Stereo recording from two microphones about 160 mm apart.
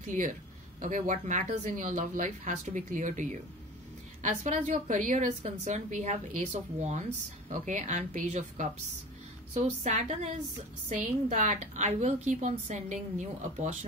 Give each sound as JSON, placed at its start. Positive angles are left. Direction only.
{"t": 0.0, "sound": "a woman's voice", "side_deg": -55}